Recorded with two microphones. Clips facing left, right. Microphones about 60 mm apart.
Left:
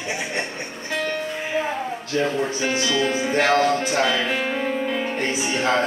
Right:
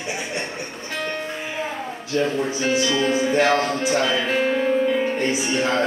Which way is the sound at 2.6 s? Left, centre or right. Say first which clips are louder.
Right 2 dB; centre.